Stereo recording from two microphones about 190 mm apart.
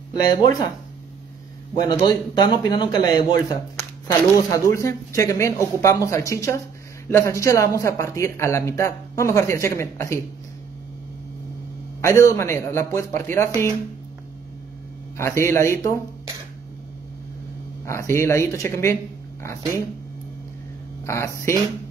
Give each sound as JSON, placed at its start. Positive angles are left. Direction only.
{"t": 0.1, "sound": "a man's voice", "side_deg": 20}
{"t": 1.7, "sound": "a man's voice", "side_deg": 15}
{"t": 12.0, "sound": "speech", "side_deg": 15}
{"t": 15.1, "sound": "speech", "side_deg": 15}
{"t": 17.8, "sound": "speech", "side_deg": 15}
{"t": 21.0, "sound": "speech", "side_deg": 15}